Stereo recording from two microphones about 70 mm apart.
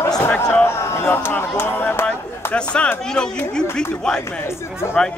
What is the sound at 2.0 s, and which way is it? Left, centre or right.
Speech, centre.